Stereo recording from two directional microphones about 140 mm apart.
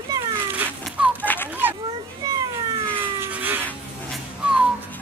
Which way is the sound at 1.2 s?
10° left (ahead or behind).